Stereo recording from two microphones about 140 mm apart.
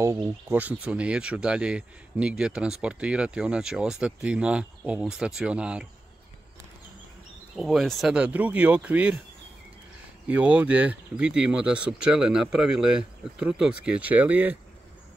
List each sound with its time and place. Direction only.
0.0 s speech: 15° right (ahead or behind)
7.5 s speech: centre (ahead or behind)
10.2 s speech: 10° right (ahead or behind)